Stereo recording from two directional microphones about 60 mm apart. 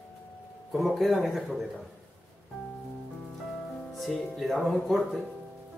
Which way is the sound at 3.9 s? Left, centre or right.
Centre.